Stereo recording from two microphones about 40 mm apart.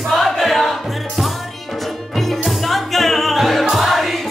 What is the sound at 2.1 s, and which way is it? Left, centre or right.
Music, centre.